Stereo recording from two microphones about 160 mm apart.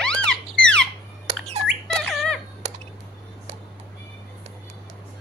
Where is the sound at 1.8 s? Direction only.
Centre (ahead or behind).